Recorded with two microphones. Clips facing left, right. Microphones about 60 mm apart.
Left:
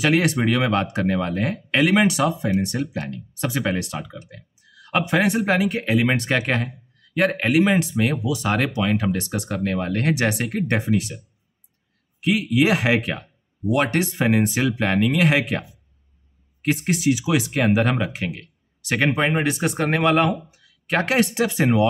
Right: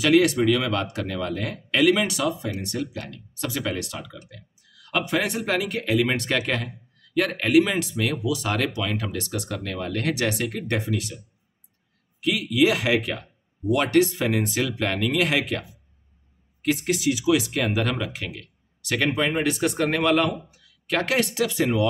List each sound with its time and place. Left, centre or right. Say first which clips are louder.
0.0 s speech: right 1 dB; left
12.2 s speech: left 2 dB; left
16.6 s speech: left 2 dB; left